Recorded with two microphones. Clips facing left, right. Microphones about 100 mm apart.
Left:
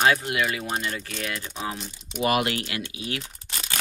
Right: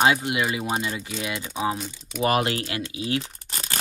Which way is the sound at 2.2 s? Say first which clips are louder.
Right 1 dB; 35° right (ahead or behind).